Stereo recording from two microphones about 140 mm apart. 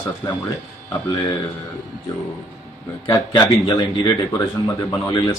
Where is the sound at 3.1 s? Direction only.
30° left (ahead or behind).